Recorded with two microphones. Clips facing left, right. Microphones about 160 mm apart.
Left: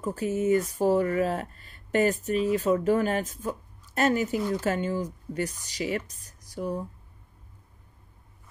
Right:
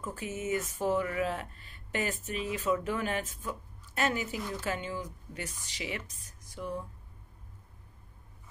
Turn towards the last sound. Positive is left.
turn(degrees=40)  # may be behind; listen again after turning